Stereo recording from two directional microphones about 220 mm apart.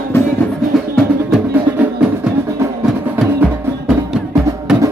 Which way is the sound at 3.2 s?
Centre (ahead or behind).